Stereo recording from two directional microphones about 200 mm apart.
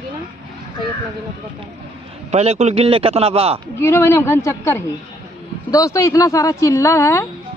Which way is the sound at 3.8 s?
10° left (ahead or behind).